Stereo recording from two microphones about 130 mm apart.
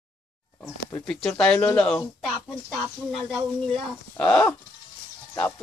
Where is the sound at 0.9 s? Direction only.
5° left (ahead or behind).